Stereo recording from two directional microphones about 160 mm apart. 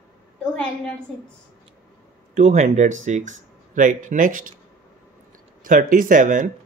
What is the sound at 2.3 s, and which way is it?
Speech, 50° right (ahead or behind).